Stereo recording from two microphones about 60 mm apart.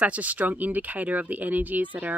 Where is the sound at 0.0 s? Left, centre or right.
Right.